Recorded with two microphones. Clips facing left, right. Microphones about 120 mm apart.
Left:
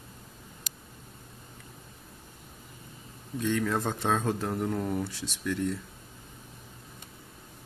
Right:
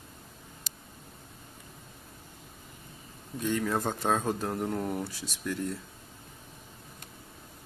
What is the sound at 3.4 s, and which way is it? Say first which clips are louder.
Speech: left 1 dB; 5° right (ahead or behind).